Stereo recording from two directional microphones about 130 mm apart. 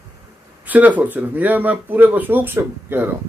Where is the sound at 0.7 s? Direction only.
10° right (ahead or behind).